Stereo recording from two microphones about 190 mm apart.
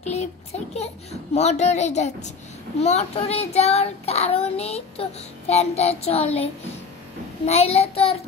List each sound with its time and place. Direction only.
0.0 s child singing: 35° left (ahead or behind)